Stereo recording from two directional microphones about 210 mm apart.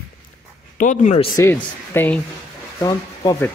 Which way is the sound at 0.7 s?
35° left (ahead or behind).